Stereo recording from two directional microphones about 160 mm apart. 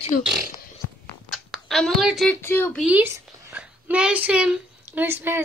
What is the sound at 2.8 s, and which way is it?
A child's voice, 10° right (ahead or behind).